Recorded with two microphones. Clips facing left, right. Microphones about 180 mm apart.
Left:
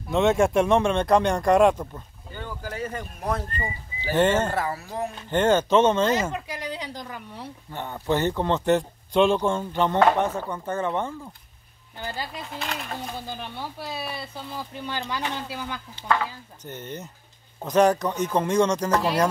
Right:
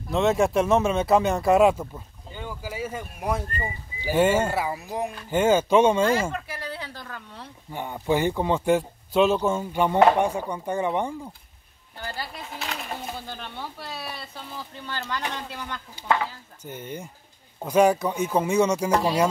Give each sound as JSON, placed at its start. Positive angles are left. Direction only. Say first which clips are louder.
{"t": 0.1, "sound": "speech", "louder": "left 1 dB", "side_deg": 0}
{"t": 6.3, "sound": "speech", "louder": "left 2 dB", "side_deg": 15}
{"t": 7.7, "sound": "speech", "louder": "right 1 dB", "side_deg": -10}
{"t": 12.0, "sound": "speech", "louder": "left 2 dB", "side_deg": 15}
{"t": 12.4, "sound": "speech", "louder": "left 1 dB", "side_deg": 0}
{"t": 13.3, "sound": "speech", "louder": "left 2 dB", "side_deg": 10}
{"t": 16.0, "sound": "speech", "louder": "right 1 dB", "side_deg": -15}